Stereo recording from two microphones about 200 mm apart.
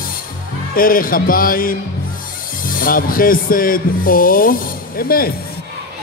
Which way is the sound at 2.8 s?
45° left (ahead or behind).